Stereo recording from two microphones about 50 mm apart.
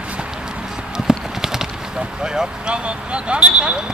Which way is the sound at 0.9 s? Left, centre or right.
Centre.